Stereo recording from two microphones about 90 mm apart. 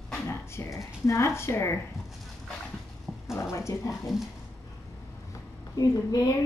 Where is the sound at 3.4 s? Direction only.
35° left (ahead or behind).